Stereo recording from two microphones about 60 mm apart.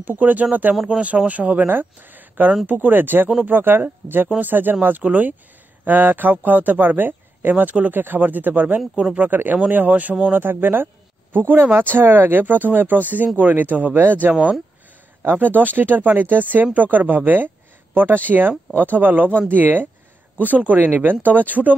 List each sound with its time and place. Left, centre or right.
0.0 s speech: right